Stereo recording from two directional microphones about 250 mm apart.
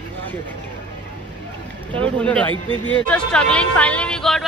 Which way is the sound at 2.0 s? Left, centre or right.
Centre.